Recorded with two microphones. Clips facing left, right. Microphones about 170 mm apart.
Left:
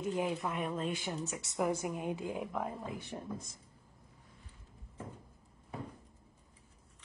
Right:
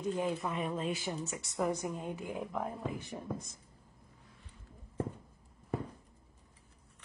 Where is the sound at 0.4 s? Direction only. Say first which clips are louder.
Even; centre (ahead or behind).